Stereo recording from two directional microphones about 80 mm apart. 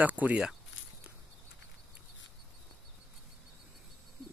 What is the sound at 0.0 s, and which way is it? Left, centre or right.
Speech, right.